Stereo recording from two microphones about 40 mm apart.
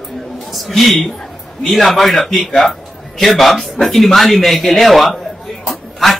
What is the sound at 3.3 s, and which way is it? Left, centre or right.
Speech, centre.